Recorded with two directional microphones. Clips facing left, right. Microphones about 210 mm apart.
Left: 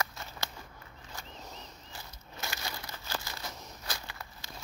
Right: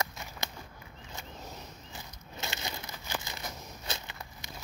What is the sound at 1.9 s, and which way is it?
Crumpling, 20° right (ahead or behind).